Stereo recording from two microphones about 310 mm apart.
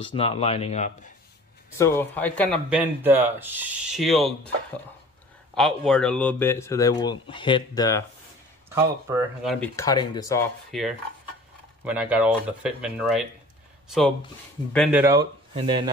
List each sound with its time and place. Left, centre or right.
0.0 s speech: centre
1.8 s speech: centre
5.5 s speech: centre
8.6 s speech: centre
11.8 s speech: centre